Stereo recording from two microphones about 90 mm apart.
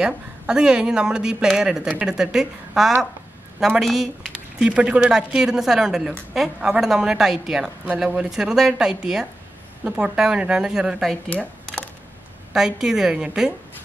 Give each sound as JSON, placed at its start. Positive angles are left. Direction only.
{"t": 0.0, "sound": "a woman's voice", "side_deg": -10}
{"t": 11.2, "sound": "a sound", "side_deg": 15}
{"t": 12.5, "sound": "speech", "side_deg": -5}